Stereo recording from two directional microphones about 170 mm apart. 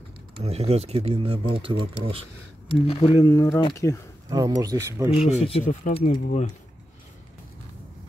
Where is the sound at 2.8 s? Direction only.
35° left (ahead or behind).